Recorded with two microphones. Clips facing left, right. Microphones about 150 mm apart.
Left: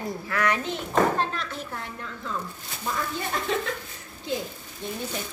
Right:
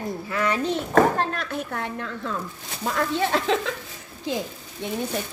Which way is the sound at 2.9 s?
80° right.